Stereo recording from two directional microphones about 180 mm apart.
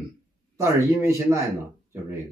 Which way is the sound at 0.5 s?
15° right (ahead or behind).